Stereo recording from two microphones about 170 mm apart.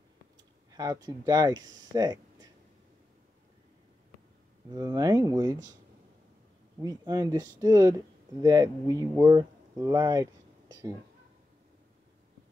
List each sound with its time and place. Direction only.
0.7 s speech: 20° right (ahead or behind)
4.7 s speech: 20° right (ahead or behind)
6.8 s a woman's voice: 20° right (ahead or behind)